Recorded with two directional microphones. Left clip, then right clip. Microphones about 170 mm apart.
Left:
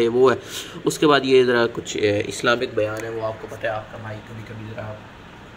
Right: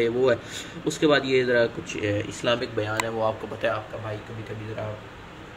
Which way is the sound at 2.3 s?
25° left (ahead or behind).